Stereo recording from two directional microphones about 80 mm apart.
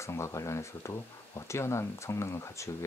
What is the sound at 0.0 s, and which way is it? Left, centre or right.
Speech, left.